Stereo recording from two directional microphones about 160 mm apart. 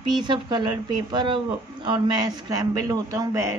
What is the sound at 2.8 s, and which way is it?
Speech, 20° right (ahead or behind).